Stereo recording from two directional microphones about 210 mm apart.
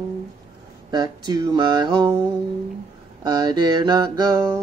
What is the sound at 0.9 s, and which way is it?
Mantra, 20° right (ahead or behind).